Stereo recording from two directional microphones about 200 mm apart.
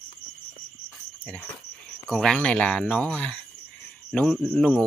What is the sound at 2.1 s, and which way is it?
Speech, centre (ahead or behind).